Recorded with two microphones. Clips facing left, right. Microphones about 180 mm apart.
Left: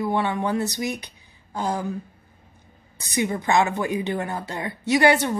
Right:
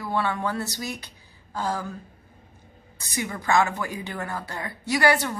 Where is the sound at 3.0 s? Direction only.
20° left (ahead or behind).